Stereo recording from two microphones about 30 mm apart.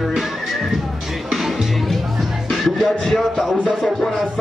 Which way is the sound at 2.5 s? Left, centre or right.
Centre.